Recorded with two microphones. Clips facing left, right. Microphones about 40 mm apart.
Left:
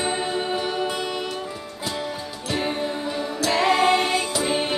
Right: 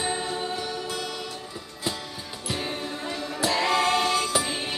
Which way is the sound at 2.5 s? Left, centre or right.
Left.